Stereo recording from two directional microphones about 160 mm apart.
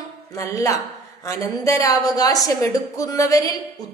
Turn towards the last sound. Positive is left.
turn(degrees=20)  # may be behind; listen again after turning